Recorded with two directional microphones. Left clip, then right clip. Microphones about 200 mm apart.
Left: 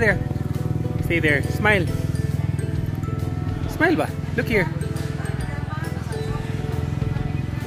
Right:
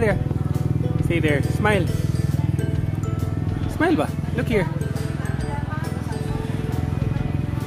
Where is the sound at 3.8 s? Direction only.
10° left (ahead or behind).